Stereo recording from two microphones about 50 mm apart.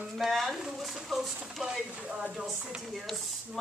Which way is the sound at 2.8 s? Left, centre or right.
Centre.